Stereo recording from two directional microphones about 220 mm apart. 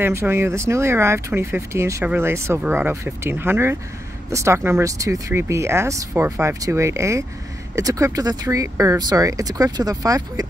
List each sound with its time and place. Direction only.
0.0 s speech: 10° right (ahead or behind)